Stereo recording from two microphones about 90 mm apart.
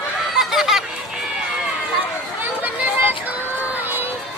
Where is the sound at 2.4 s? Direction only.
20° right (ahead or behind).